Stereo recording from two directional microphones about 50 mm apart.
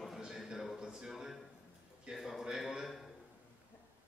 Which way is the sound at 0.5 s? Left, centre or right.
Centre.